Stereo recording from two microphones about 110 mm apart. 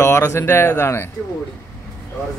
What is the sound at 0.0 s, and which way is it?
Speech, 25° left (ahead or behind).